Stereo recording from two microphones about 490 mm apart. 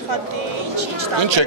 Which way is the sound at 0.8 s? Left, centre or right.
Right.